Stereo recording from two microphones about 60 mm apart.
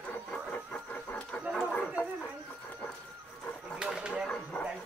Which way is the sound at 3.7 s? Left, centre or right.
Centre.